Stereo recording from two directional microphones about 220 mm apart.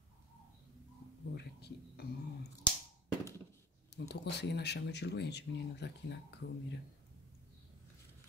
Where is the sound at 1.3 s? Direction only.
45° left (ahead or behind).